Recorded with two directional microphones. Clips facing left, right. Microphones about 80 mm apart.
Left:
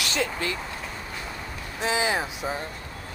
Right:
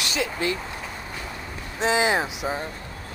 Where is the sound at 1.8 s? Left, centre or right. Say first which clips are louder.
Right 4 dB; right.